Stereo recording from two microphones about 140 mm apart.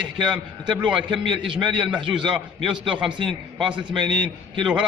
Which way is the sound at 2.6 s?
5° right (ahead or behind).